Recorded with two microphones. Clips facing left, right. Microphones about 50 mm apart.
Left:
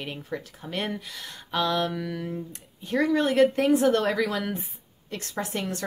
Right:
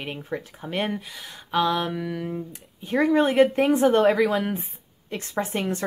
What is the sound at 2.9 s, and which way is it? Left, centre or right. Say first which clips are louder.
A woman's voice: right 3 dB; right.